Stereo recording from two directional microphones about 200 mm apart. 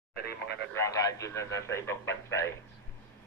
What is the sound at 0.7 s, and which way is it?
Speech, 15° left (ahead or behind).